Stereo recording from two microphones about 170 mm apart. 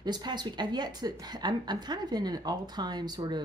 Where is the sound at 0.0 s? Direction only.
25° right (ahead or behind).